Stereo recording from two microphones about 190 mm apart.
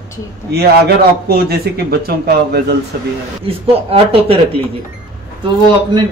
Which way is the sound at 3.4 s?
30° right (ahead or behind).